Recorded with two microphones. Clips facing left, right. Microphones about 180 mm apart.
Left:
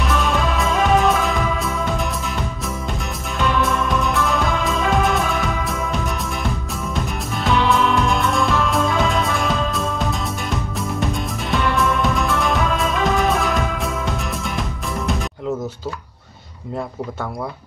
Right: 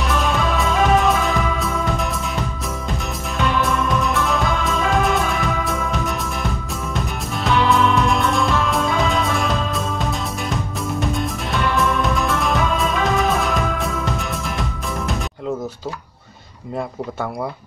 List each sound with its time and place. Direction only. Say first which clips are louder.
0.0 s music: even; centre (ahead or behind)